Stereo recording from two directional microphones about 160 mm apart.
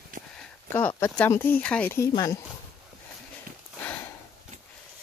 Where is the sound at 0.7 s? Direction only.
15° left (ahead or behind).